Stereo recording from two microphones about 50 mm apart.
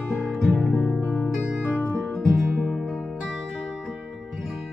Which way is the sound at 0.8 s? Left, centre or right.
Left.